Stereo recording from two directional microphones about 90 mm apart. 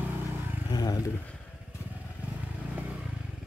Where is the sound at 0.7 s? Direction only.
50° left (ahead or behind).